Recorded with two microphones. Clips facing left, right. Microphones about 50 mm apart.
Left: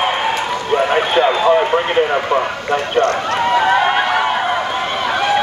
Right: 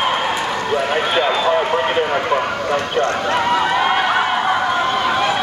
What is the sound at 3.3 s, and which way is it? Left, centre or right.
Run, centre.